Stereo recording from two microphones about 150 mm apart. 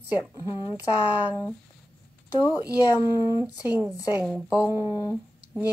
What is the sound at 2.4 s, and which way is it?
Speech, 25° left (ahead or behind).